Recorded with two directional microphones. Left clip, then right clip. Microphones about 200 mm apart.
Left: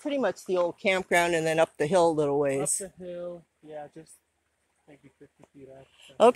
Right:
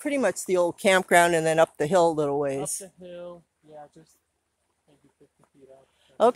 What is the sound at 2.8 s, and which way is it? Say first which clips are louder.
Speech: left 3 dB; 45° left (ahead or behind).